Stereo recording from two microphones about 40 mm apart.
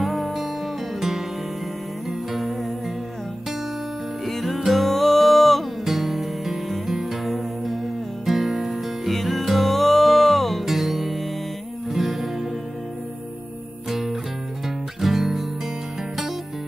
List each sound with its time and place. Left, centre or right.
0.0 s music: centre
2.0 s music: centre
4.3 s music: centre
5.9 s music: centre
10.6 s music: centre
13.8 s music: centre